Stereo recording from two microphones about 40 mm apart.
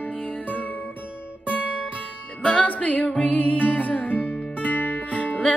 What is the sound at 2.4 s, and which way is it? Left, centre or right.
Music, left.